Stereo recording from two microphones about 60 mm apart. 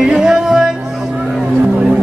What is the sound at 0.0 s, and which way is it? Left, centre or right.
Music, centre.